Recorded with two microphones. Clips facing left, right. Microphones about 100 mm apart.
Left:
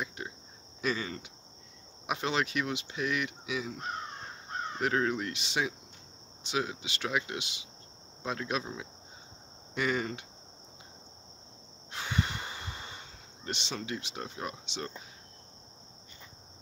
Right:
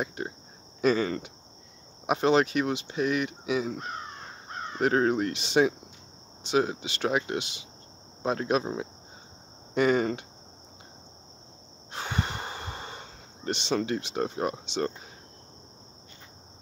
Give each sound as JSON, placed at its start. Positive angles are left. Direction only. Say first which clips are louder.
{"t": 0.0, "sound": "speech", "louder": "right 6 dB", "side_deg": -40}
{"t": 2.0, "sound": "speech", "louder": "right 9 dB", "side_deg": -35}
{"t": 4.7, "sound": "speech", "louder": "right 6 dB", "side_deg": -40}
{"t": 11.9, "sound": "snort", "louder": "right 2 dB", "side_deg": -35}
{"t": 13.7, "sound": "speech", "louder": "right 12 dB", "side_deg": -50}